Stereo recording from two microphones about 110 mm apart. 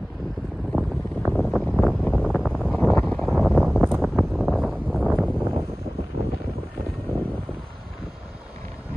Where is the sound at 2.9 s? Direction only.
15° left (ahead or behind).